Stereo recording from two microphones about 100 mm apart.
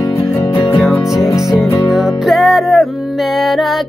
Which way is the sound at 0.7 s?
Centre (ahead or behind).